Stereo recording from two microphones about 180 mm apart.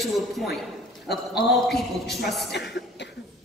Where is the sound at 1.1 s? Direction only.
65° left (ahead or behind).